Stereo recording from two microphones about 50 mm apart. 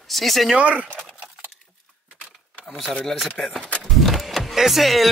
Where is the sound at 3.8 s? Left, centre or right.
Centre.